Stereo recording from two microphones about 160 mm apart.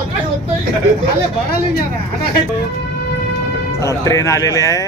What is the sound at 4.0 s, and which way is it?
Speech, 20° left (ahead or behind).